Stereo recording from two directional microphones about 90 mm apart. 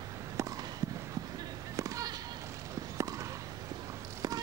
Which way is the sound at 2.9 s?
40° right (ahead or behind).